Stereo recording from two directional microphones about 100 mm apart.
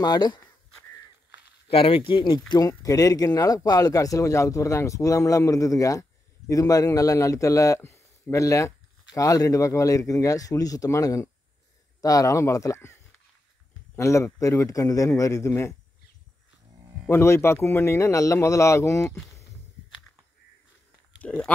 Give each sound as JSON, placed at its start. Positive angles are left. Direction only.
{"t": 0.0, "sound": "speech", "side_deg": 45}
{"t": 1.7, "sound": "speech", "side_deg": 70}
{"t": 17.1, "sound": "speech", "side_deg": 25}
{"t": 21.2, "sound": "speech", "side_deg": 5}